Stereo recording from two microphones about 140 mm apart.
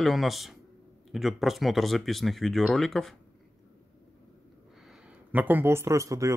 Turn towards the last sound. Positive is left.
turn(degrees=-20)  # may be behind; listen again after turning